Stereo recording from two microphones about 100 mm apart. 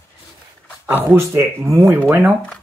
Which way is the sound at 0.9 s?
25° right (ahead or behind).